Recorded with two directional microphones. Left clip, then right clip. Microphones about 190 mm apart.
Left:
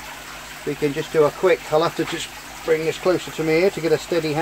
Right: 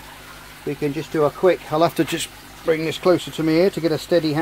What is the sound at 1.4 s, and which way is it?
Speech, 50° right (ahead or behind).